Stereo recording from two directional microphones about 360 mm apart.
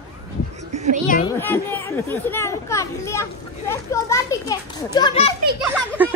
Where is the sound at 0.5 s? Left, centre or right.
Centre.